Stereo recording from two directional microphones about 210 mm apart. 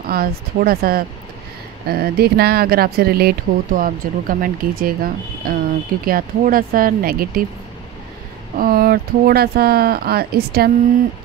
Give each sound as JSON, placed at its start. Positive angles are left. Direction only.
{"t": 0.0, "sound": "speech", "side_deg": -45}
{"t": 8.5, "sound": "speech", "side_deg": -45}